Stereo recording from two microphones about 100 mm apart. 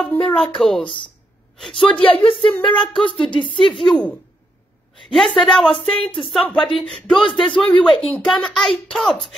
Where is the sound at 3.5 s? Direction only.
Centre (ahead or behind).